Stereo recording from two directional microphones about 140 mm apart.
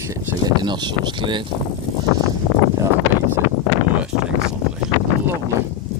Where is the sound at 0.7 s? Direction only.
35° right (ahead or behind).